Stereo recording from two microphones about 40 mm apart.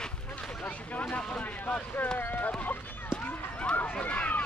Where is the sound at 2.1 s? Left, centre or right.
Left.